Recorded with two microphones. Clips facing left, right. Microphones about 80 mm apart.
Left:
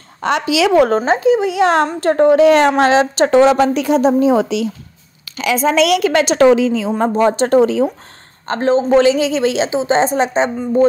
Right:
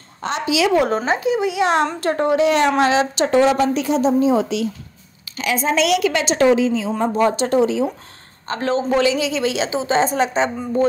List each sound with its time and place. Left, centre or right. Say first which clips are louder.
0.2 s a woman's voice: left 4 dB; left
0.8 s a woman's voice: left 6 dB; left
3.3 s a woman's voice: left 4 dB; left
5.9 s a woman's voice: left 5 dB; left
6.3 s a woman's voice: left 3 dB; left
7.4 s a woman's voice: left 5 dB; left
8.6 s speech: left 7 dB; left
9.0 s a woman's voice: left 5 dB; left